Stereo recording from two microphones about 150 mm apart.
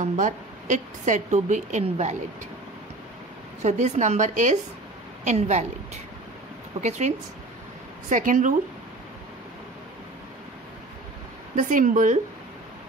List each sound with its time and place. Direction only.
0.0 s a woman's voice: 55° right (ahead or behind)
3.6 s a woman's voice: 50° right (ahead or behind)
6.8 s a woman's voice: 50° right (ahead or behind)
11.5 s a woman's voice: 60° right (ahead or behind)